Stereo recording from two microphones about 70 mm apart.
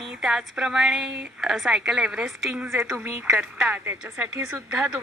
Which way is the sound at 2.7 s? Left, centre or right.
Right.